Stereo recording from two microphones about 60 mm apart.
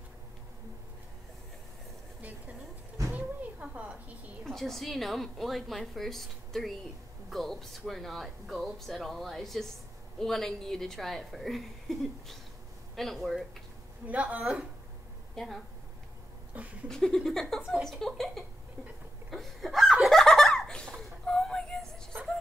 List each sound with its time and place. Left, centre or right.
3.1 s a sound: right
4.5 s speech: centre
14.0 s speech: right
14.4 s speech: centre
16.8 s speech: centre
19.3 s laughter: centre
20.9 s a sound: centre